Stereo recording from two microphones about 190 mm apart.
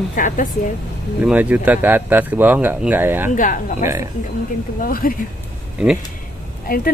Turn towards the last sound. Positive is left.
turn(degrees=50)  # may be behind; listen again after turning